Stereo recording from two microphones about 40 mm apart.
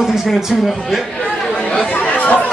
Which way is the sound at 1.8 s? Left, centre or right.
Left.